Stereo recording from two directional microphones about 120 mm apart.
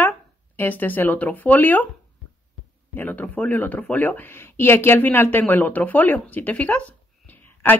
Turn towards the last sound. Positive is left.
turn(degrees=15)  # may be behind; listen again after turning